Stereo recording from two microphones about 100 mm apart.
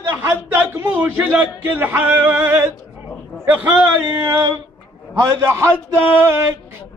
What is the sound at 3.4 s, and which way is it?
Female singing, 15° right (ahead or behind).